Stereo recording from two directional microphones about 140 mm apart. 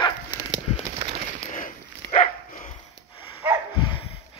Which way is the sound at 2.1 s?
60° left (ahead or behind).